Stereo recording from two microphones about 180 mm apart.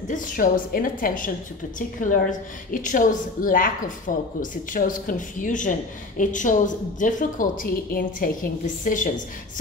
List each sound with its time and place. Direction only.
0.1 s a woman's voice: 50° left (ahead or behind)